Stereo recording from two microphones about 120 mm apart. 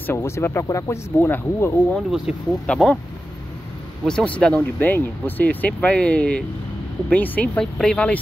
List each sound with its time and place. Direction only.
0.0 s speech: 20° left (ahead or behind)
2.0 s speech: 5° right (ahead or behind)
2.6 s speech: 10° left (ahead or behind)
4.0 s speech: 5° left (ahead or behind)